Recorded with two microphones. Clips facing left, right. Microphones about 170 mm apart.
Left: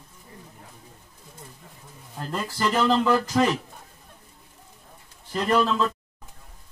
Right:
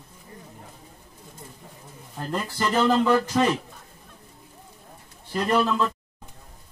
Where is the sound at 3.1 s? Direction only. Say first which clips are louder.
Even; 5° left (ahead or behind).